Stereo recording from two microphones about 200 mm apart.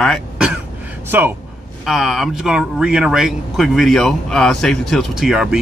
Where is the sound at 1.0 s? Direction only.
10° right (ahead or behind).